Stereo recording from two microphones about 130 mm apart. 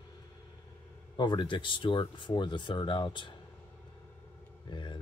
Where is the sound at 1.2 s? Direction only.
35° left (ahead or behind).